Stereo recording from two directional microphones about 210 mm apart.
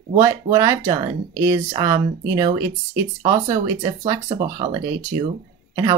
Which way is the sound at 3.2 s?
15° right (ahead or behind).